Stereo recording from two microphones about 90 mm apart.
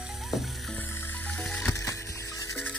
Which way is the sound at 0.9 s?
20° left (ahead or behind).